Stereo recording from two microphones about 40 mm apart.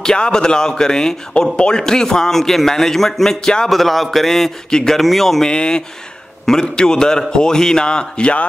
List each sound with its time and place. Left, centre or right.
0.0 s a man's voice: centre
4.6 s a man's voice: centre
4.9 s speech: centre
5.4 s a man's voice: left